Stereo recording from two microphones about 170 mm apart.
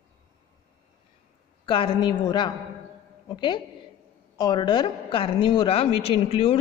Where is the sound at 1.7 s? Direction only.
30° left (ahead or behind).